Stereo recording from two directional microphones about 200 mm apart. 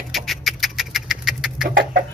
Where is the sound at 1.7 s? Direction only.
45° right (ahead or behind).